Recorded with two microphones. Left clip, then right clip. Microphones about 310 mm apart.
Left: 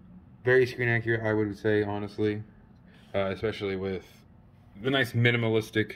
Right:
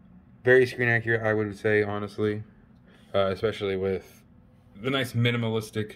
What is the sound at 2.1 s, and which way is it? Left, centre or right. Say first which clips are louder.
Speech: right 1 dB; right.